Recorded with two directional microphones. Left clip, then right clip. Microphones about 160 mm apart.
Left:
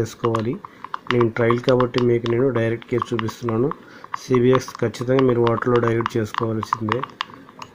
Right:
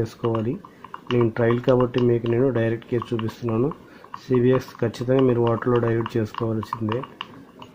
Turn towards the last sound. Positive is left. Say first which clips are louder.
# left 4 dB
turn(degrees=25)  # may be behind; listen again after turning